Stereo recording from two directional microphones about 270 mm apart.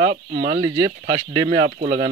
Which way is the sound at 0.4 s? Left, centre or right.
Centre.